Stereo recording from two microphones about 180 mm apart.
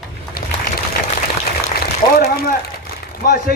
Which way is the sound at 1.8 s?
60° left (ahead or behind).